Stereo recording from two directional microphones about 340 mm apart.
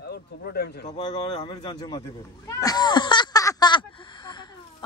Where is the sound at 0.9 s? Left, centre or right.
Centre.